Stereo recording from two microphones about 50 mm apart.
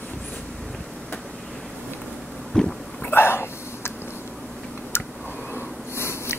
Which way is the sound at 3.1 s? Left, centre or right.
Left.